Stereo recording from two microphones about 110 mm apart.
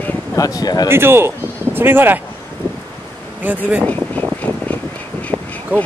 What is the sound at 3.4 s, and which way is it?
Speech, 15° right (ahead or behind).